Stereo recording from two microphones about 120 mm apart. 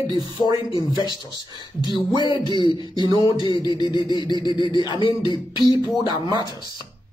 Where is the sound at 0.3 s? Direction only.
40° left (ahead or behind).